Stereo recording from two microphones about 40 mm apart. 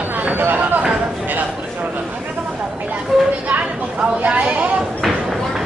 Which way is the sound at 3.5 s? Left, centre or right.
Right.